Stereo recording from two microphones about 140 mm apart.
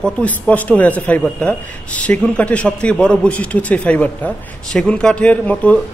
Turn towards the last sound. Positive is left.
turn(degrees=10)  # may be behind; listen again after turning